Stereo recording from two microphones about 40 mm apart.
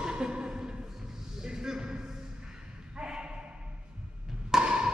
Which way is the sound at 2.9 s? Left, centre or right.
Right.